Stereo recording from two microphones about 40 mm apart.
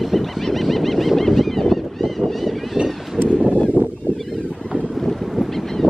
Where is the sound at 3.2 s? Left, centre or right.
Right.